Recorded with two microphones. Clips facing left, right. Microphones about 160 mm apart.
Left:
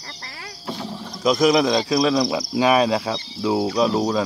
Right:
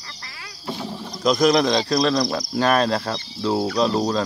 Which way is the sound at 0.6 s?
Centre (ahead or behind).